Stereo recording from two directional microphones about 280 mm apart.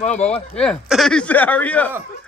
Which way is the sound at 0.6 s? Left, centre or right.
Centre.